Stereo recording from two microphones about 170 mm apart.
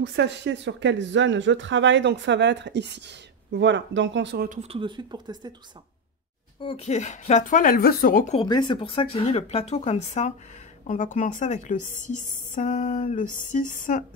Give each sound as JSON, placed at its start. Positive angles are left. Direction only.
{"t": 0.0, "sound": "speech", "side_deg": -90}
{"t": 4.5, "sound": "speech", "side_deg": -40}
{"t": 6.6, "sound": "speech", "side_deg": 35}
{"t": 8.4, "sound": "speech", "side_deg": 25}